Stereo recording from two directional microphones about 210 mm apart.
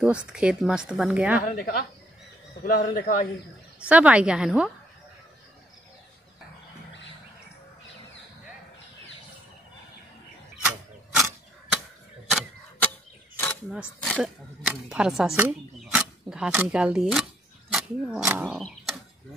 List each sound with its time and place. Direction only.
0.3 s speech: 5° right (ahead or behind)
1.5 s a woman's voice: 45° left (ahead or behind)
3.8 s speech: 5° right (ahead or behind)
10.6 s a sound: centre (ahead or behind)
13.4 s a sound: 10° left (ahead or behind)
13.8 s speech: 5° left (ahead or behind)